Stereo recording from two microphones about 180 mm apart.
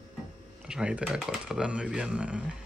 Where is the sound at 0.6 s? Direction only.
5° right (ahead or behind).